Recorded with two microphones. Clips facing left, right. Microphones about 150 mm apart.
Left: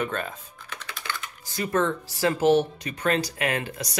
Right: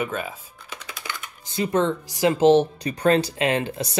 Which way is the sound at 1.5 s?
20° right (ahead or behind).